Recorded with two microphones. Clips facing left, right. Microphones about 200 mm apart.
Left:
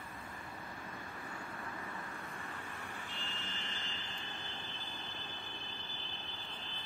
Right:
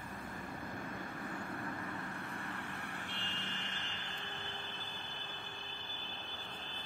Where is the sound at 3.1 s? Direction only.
65° right (ahead or behind).